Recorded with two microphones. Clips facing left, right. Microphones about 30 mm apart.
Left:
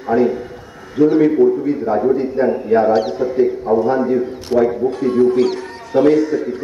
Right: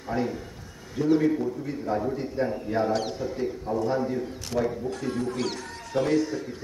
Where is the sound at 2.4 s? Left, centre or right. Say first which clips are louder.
Left 12 dB; left.